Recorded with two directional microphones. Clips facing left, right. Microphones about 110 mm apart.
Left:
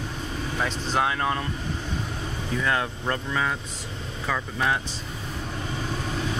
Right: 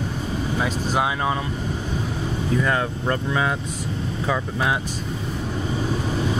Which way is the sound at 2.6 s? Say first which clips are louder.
Right 1 dB; 5° right (ahead or behind).